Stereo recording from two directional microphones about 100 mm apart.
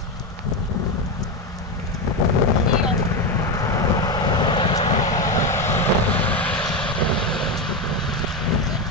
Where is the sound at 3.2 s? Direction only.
30° left (ahead or behind); by 5.2 s 50° left (ahead or behind).